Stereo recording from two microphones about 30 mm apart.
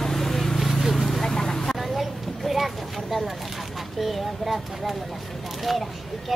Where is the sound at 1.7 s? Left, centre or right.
Centre.